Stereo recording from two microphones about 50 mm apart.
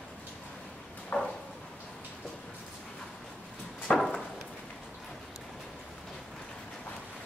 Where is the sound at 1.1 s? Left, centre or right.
Left.